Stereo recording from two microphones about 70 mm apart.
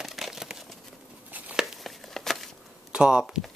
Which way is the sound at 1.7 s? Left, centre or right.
Centre.